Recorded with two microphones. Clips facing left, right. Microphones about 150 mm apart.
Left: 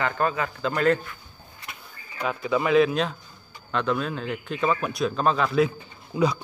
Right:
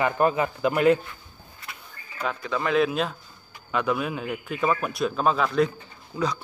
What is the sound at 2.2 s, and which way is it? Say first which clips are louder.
Speech: left 3 dB; 10° left (ahead or behind).